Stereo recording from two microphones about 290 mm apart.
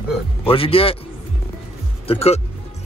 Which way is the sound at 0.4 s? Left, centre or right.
Centre.